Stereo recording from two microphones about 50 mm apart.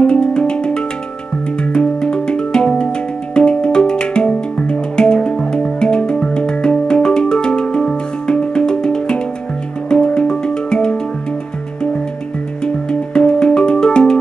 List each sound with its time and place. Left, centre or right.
0.0 s music: centre
12.6 s music: centre